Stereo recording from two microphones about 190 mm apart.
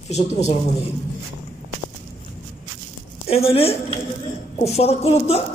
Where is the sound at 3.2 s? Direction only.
30° left (ahead or behind).